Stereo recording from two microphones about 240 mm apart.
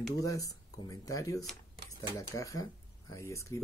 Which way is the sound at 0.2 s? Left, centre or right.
Centre.